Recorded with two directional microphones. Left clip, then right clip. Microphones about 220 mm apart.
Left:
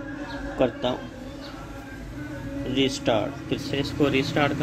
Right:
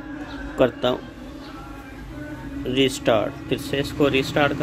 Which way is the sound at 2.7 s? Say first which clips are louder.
Right 4 dB; 20° right (ahead or behind).